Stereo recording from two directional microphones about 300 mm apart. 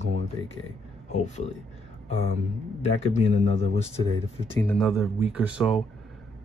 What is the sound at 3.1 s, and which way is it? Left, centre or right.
Speech, left.